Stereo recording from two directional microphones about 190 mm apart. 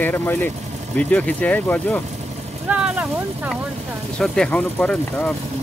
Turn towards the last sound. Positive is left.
turn(degrees=5)  # may be behind; listen again after turning